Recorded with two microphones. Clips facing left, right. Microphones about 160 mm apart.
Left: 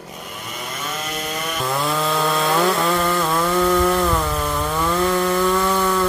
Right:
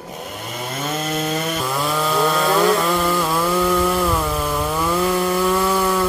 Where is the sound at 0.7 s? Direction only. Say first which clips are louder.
Right 6 dB; 30° right (ahead or behind).